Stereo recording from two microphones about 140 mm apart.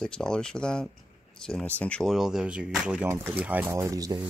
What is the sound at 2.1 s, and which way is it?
Speech, 5° right (ahead or behind).